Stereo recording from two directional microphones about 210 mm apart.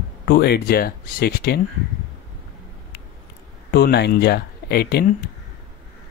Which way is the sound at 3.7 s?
50° left (ahead or behind).